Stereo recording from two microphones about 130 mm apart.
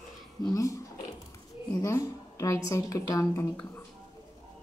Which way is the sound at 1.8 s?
25° left (ahead or behind).